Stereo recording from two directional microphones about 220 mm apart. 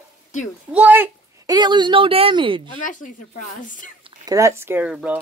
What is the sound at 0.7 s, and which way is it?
A woman's voice, 10° right (ahead or behind).